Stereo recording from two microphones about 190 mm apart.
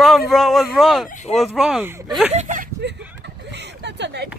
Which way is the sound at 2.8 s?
65° right (ahead or behind).